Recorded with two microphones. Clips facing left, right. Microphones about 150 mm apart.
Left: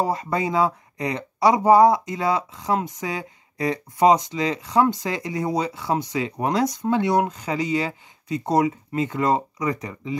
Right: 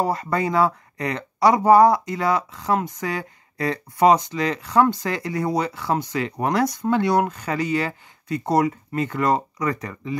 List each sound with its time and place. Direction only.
0.0 s speech: 20° left (ahead or behind)